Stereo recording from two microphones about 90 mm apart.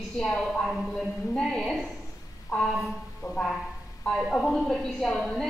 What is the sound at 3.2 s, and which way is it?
Speech, 40° left (ahead or behind).